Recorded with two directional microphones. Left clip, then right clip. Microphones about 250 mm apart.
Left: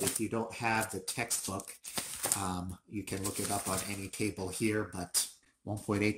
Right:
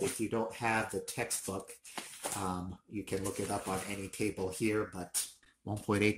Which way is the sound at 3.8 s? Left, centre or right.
Centre.